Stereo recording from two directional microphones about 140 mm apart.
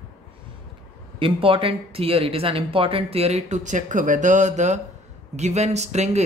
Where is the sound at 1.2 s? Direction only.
40° right (ahead or behind).